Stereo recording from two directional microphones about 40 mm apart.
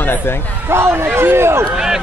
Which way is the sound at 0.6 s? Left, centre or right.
Right.